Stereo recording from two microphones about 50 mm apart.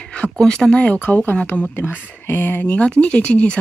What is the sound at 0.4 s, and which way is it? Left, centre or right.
Speech, centre.